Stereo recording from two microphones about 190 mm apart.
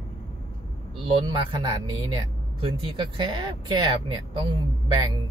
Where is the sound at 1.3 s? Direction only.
25° right (ahead or behind).